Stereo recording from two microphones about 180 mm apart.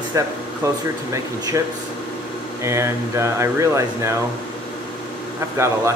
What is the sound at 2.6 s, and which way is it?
Speech, 15° right (ahead or behind).